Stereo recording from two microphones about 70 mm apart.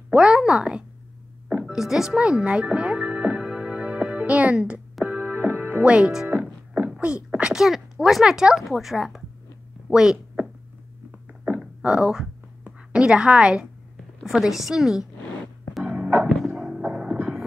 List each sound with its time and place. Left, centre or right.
0.1 s speech: centre
1.5 s music: centre; by 6.9 s right
7.0 s speech: centre
7.5 s a woman's voice: centre
11.4 s a sound: centre
12.6 s a woman's voice: centre
15.7 s music: centre
16.5 s a sound: centre